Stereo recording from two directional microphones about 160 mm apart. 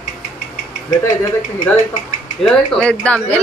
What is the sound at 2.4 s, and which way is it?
Speech, 5° left (ahead or behind).